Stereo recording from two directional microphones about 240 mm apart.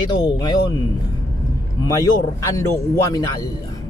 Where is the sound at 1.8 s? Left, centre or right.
Centre.